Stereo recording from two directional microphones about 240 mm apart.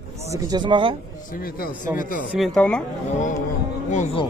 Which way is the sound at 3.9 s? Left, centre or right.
Left.